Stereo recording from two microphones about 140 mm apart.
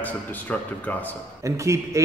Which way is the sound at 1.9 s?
20° right (ahead or behind).